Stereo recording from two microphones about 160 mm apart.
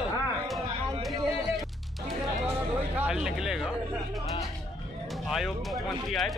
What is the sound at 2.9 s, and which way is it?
Speech, 5° right (ahead or behind).